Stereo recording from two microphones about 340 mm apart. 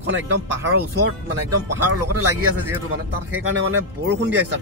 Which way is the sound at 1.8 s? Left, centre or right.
Right.